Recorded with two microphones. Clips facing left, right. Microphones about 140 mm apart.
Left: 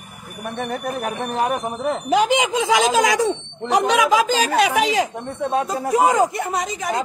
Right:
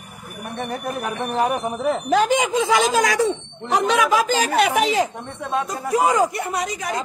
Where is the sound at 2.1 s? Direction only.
15° left (ahead or behind).